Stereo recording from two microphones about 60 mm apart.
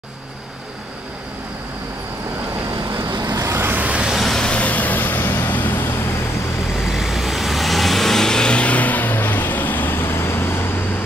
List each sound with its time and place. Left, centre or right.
3.2 s vehicle: right
3.4 s vehicle: right
3.9 s vehicle: centre
4.2 s vehicle: centre
4.5 s vehicle: left
6.7 s vehicle: centre; by 10.6 s left